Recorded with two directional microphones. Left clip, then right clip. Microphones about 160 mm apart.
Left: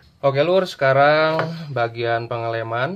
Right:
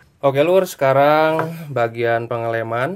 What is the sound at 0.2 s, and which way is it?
Speech, 25° right (ahead or behind).